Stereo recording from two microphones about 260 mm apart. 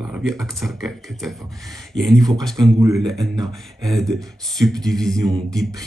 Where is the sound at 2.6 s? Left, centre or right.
Centre.